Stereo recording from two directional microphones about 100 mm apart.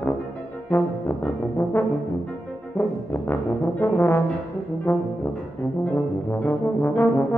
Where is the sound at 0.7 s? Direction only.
20° left (ahead or behind).